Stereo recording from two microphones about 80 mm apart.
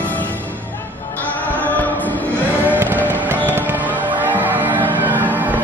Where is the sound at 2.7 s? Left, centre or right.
Right.